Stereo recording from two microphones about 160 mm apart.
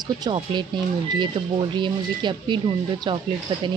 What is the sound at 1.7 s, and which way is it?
A woman's voice, 30° right (ahead or behind).